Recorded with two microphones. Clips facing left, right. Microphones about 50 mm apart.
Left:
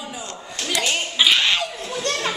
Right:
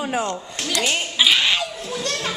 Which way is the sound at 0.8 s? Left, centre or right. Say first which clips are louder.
Even; centre.